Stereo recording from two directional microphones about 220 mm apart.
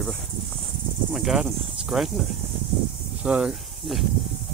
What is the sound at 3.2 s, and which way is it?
Speech, 5° right (ahead or behind).